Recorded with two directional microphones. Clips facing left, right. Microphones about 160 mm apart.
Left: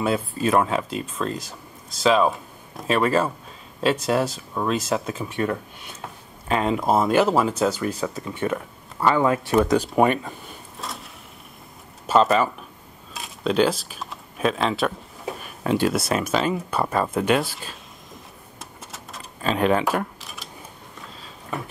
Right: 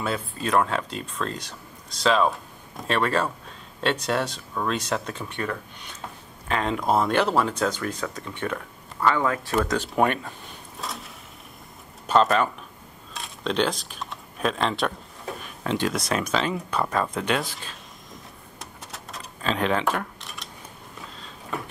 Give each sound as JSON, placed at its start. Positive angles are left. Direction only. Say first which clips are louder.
{"t": 0.0, "sound": "speech", "louder": "left 6 dB", "side_deg": 5}
{"t": 9.0, "sound": "speech", "louder": "left 3 dB", "side_deg": 20}
{"t": 9.7, "sound": "a sound", "louder": "left 4 dB", "side_deg": 5}
{"t": 12.1, "sound": "speech", "louder": "left 2 dB", "side_deg": 0}
{"t": 18.6, "sound": "keys jangling", "louder": "even", "side_deg": 0}